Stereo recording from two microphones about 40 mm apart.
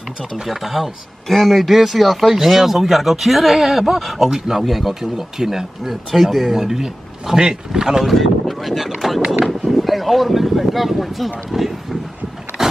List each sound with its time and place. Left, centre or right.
0.5 s speech: centre
8.0 s speech: centre
9.2 s speech: centre
9.7 s speech: centre
12.6 s vehicle: centre